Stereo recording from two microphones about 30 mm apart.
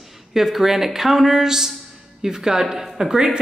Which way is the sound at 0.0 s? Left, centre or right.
Centre.